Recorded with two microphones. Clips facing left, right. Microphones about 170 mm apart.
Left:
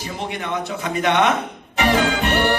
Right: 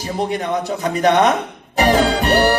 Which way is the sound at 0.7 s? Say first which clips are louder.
Right 5 dB; 35° right (ahead or behind).